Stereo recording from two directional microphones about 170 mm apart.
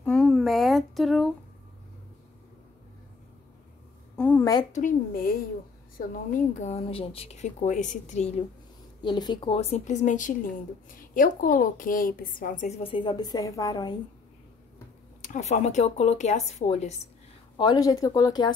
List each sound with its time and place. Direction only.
0.0 s speech: 5° left (ahead or behind)
4.2 s a sound: 10° left (ahead or behind)
4.7 s speech: 55° left (ahead or behind)
6.5 s a woman's voice: 40° left (ahead or behind)
9.0 s a woman's voice: 25° left (ahead or behind)
15.2 s a woman's voice: 45° left (ahead or behind)
17.6 s speech: 25° left (ahead or behind)